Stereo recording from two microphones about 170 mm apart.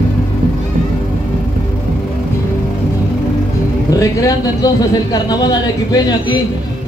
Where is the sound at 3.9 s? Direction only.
20° left (ahead or behind).